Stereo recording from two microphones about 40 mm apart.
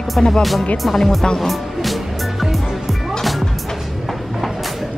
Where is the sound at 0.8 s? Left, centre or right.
Centre.